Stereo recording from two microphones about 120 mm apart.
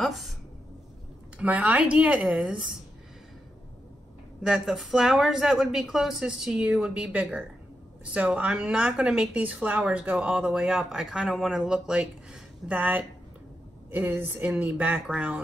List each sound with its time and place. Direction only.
0.0 s a woman's voice: centre (ahead or behind)
1.4 s a woman's voice: 10° right (ahead or behind)
4.4 s a woman's voice: centre (ahead or behind)